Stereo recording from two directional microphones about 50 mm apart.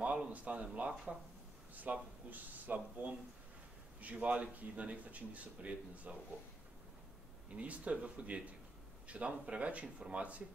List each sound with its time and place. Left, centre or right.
0.0 s a man's voice: right
1.9 s a man's voice: right
7.5 s a man's voice: right
9.9 s speech: centre